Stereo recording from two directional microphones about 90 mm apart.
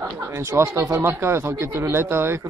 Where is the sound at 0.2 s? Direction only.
30° right (ahead or behind).